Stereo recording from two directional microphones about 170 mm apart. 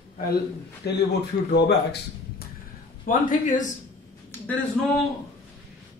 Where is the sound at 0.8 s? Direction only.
70° left (ahead or behind).